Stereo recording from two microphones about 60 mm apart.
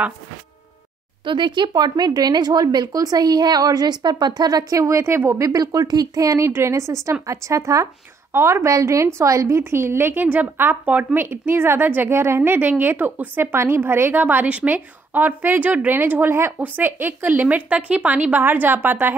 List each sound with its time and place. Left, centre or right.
2.0 s a woman's voice: right
5.5 s speech: right
8.3 s speech: right
9.6 s a woman's voice: right
11.1 s a woman's voice: right